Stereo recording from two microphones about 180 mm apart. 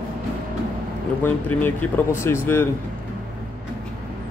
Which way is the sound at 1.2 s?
10° left (ahead or behind).